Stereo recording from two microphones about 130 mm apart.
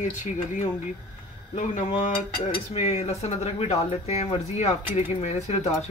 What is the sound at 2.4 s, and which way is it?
Speech, 55° left (ahead or behind).